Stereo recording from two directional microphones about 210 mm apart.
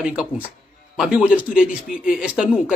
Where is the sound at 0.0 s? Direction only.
5° right (ahead or behind).